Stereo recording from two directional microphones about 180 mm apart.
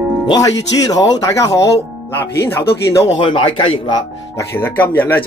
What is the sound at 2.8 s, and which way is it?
Speech, 15° left (ahead or behind).